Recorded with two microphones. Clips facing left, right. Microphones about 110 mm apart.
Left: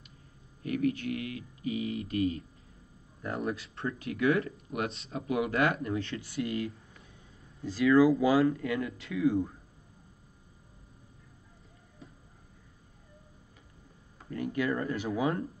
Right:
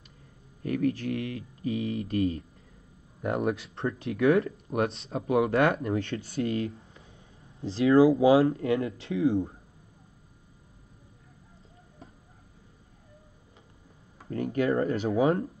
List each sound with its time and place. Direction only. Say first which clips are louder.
0.7 s speech: right 2 dB; 35° right (ahead or behind)
3.3 s speech: right 6 dB; 75° right (ahead or behind)
3.7 s speech: right 4 dB; 30° right (ahead or behind)
14.3 s speech: right 5 dB; 40° right (ahead or behind)